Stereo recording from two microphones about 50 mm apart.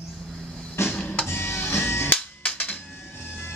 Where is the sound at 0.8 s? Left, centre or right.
Left.